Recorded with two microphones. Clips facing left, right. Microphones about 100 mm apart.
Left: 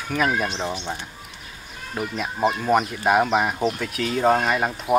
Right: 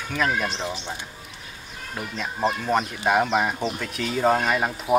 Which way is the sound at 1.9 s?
10° left (ahead or behind).